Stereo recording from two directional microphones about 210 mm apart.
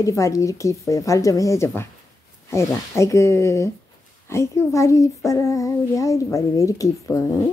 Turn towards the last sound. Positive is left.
turn(degrees=15)  # may be behind; listen again after turning